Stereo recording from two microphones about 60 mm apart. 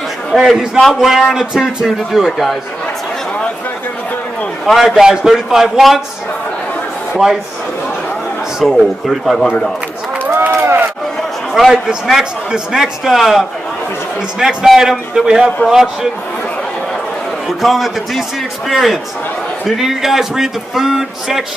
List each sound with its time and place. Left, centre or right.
0.3 s a man's voice: centre
4.6 s a man's voice: centre
8.6 s a man's voice: centre
10.5 s a sound: right
11.5 s a man's voice: centre
17.5 s a man's voice: centre